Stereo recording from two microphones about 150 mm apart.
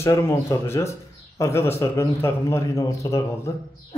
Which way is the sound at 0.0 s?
20° left (ahead or behind).